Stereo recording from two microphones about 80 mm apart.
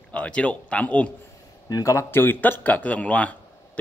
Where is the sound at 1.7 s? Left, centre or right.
Left.